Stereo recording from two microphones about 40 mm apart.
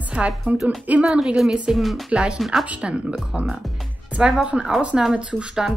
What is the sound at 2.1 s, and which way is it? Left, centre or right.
Speech, right.